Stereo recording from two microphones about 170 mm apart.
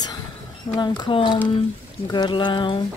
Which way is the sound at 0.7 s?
25° left (ahead or behind).